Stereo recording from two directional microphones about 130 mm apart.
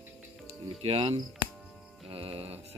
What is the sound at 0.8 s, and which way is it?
Mantra, 50° right (ahead or behind).